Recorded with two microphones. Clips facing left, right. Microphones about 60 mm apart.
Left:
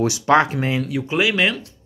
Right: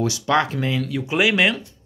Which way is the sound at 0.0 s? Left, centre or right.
Centre.